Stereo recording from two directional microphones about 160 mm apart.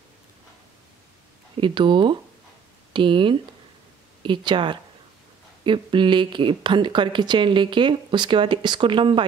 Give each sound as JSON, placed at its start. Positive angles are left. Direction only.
{"t": 1.6, "sound": "speech", "side_deg": -30}